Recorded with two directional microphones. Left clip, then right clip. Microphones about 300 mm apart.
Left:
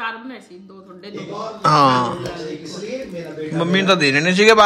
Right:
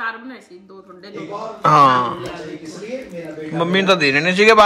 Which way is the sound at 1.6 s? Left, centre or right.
Centre.